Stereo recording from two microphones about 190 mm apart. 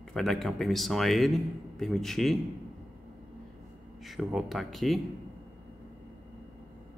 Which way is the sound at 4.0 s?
Centre (ahead or behind).